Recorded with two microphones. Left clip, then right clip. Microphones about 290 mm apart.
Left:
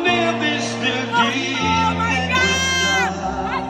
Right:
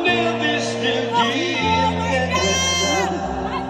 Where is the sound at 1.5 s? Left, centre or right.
Left.